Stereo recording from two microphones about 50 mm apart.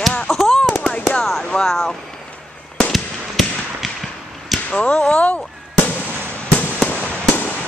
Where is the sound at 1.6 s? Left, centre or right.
Centre.